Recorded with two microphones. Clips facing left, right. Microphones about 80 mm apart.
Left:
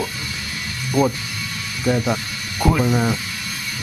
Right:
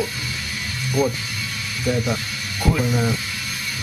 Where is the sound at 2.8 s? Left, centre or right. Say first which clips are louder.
Left 3 dB; left.